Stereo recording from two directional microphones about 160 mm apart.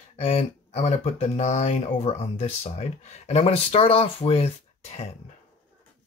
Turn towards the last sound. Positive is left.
turn(degrees=35)  # may be behind; listen again after turning